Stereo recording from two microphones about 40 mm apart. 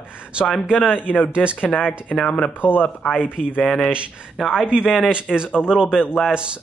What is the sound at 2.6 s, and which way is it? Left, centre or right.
Speech, left.